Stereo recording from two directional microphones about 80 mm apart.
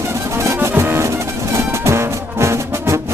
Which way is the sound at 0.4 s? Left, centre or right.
Right.